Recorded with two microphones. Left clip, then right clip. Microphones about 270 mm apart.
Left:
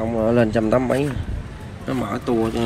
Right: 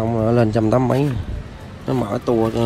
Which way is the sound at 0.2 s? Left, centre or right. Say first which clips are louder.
Even; left.